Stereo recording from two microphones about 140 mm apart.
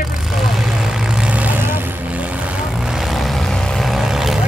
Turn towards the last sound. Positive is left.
turn(degrees=0)  # may be behind; listen again after turning